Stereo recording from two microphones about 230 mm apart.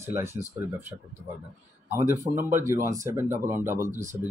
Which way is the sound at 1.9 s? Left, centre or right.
Centre.